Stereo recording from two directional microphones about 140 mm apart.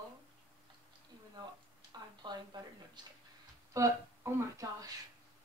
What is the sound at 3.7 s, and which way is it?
Speech, 25° right (ahead or behind).